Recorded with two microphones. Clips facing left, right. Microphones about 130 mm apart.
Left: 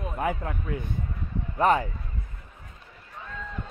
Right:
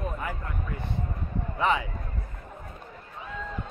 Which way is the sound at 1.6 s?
45° left (ahead or behind).